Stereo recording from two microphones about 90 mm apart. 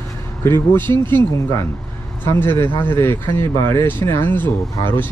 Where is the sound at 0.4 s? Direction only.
25° left (ahead or behind).